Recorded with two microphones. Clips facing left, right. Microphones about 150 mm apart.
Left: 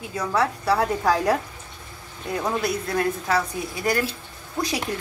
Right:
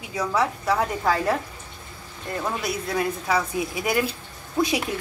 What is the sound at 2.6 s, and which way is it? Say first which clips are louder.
A woman's voice: left 2 dB; 10° right (ahead or behind).